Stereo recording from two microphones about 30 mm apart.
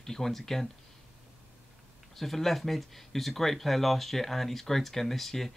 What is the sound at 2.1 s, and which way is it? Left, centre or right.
Speech, centre.